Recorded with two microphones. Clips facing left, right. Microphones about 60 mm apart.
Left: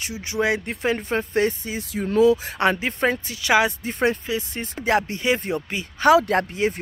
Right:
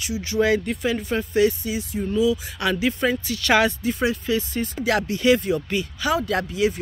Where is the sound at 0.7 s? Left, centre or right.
Left.